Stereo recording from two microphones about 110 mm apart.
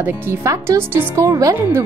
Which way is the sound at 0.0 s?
25° right (ahead or behind).